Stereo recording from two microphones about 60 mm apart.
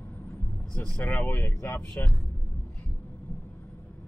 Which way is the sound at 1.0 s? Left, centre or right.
Left.